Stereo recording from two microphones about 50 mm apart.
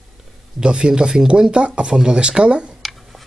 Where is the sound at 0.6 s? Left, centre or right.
Centre.